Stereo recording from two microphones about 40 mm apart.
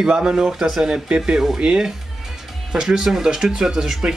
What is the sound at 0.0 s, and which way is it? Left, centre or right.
Speech, centre.